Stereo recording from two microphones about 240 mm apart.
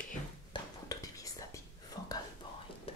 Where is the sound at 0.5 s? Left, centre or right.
Centre.